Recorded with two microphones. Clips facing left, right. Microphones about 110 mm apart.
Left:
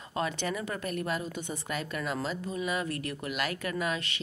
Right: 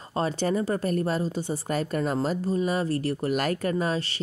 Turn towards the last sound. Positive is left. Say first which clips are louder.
# right 6 dB
turn(degrees=-35)  # may be behind; listen again after turning